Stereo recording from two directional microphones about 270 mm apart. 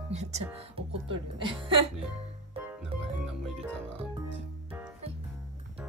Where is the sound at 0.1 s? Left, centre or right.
Right.